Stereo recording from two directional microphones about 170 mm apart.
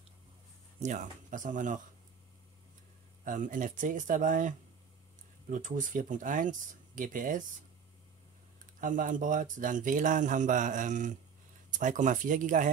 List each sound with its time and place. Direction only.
0.7 s speech: 45° right (ahead or behind)
3.3 s speech: 50° right (ahead or behind)
8.8 s speech: 50° right (ahead or behind)